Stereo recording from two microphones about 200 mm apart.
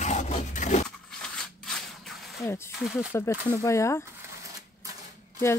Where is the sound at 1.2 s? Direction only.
5° left (ahead or behind).